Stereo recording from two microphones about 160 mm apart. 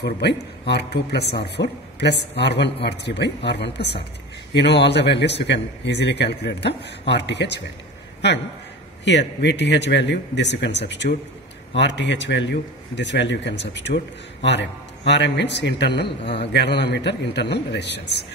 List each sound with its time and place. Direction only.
0.0 s a man's voice: 90° left
9.0 s a man's voice: 90° left